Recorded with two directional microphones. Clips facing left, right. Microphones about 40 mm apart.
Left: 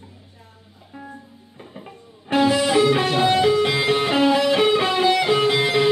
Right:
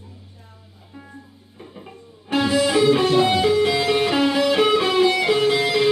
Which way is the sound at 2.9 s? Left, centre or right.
Left.